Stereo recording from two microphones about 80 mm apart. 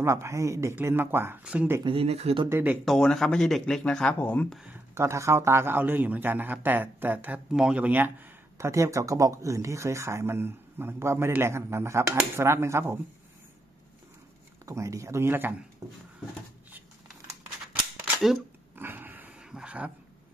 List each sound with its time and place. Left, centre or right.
0.0 s speech: right
0.7 s a man's voice: right
1.4 s speech: centre
1.9 s speech: right
2.5 s a man's voice: right
2.8 s speech: centre; by 4.5 s left
4.9 s a man's voice: right; by 8.1 s centre
8.5 s speech: right
14.7 s speech: right
15.8 s speech: right
18.1 s dishes: centre
18.8 s a sound: right
19.5 s speech: centre